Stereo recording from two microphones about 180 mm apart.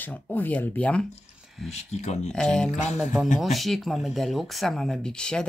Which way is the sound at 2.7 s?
40° left (ahead or behind).